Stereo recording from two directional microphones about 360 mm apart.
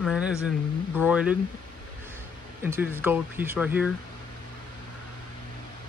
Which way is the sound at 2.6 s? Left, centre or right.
Centre.